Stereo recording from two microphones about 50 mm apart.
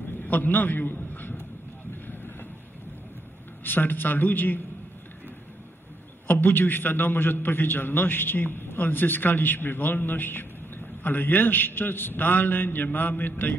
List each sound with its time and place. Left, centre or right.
0.2 s a man's voice: left
3.6 s a man's voice: left
6.2 s a man's voice: left